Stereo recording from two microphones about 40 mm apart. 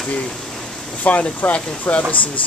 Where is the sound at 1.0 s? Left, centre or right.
Left.